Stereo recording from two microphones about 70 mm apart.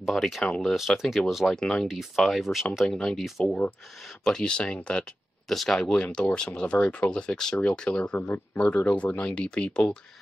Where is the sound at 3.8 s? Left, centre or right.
Centre.